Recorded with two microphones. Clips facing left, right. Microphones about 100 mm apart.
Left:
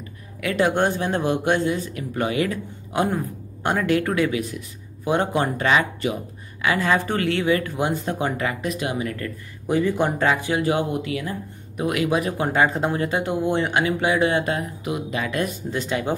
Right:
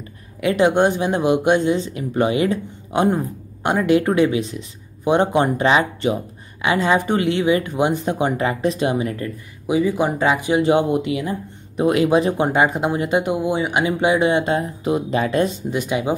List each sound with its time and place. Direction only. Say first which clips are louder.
0.4 s speech: right 5 dB; 20° right (ahead or behind)
9.7 s speech: right 2 dB; 5° right (ahead or behind); by 12.4 s 30° right (ahead or behind)
12.4 s speech: right 2 dB; 15° right (ahead or behind)